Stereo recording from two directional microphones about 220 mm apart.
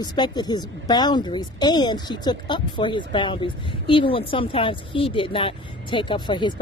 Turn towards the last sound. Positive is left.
turn(degrees=20)  # may be behind; listen again after turning